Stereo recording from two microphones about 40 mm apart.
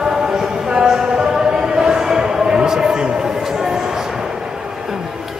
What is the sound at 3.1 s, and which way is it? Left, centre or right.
Music, centre.